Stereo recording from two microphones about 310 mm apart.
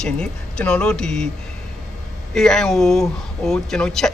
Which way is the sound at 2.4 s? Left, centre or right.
Centre.